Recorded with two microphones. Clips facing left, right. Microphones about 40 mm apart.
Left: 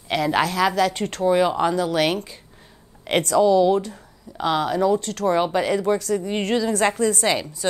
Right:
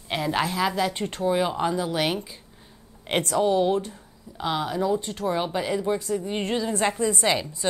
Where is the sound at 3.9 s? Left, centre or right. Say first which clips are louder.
Left 5 dB; left.